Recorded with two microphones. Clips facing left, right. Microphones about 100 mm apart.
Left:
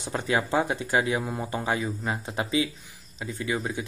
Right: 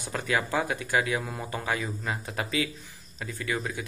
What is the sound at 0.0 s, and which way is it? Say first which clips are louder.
Speech: left 2 dB; 25° left (ahead or behind).